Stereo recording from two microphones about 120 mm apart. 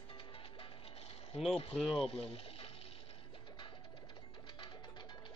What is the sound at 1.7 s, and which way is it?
Speech, 5° right (ahead or behind).